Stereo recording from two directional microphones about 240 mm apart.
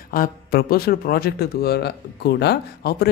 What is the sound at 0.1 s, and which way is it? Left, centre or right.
Speech, left.